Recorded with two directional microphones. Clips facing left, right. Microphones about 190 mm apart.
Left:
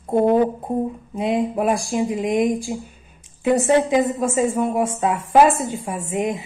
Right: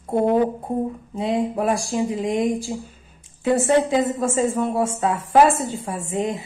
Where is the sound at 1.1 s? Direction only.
15° left (ahead or behind).